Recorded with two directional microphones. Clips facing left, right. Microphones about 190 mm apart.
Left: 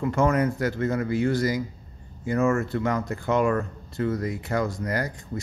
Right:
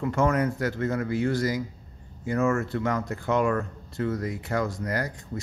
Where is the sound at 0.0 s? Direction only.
15° left (ahead or behind).